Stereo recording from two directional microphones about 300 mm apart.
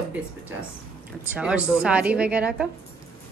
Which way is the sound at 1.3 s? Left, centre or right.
Centre.